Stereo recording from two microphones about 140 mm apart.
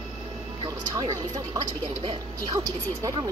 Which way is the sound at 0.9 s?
25° right (ahead or behind).